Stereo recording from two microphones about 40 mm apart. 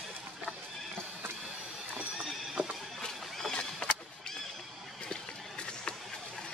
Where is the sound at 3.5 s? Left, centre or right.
Left.